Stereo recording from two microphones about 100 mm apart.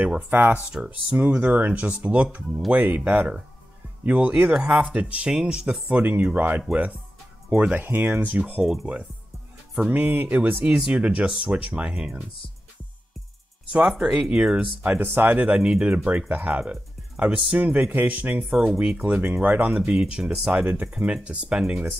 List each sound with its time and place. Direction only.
0.3 s speech: 15° right (ahead or behind)
9.8 s speech: 15° right (ahead or behind)
13.7 s speech: 10° right (ahead or behind)
20.6 s speech: 20° right (ahead or behind)
20.9 s speech: 10° right (ahead or behind)